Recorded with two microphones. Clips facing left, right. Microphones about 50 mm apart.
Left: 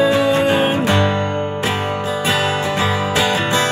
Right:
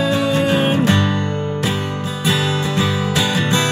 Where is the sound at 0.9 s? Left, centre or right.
Left.